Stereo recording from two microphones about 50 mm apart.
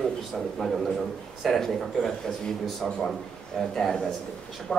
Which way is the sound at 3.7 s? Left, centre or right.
Centre.